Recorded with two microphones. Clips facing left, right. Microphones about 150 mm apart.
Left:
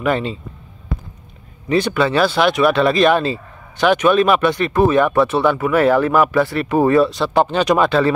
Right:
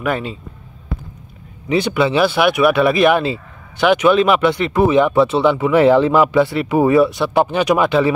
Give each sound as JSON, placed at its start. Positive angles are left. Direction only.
{"t": 0.0, "sound": "speech", "side_deg": -5}
{"t": 1.7, "sound": "speech", "side_deg": -10}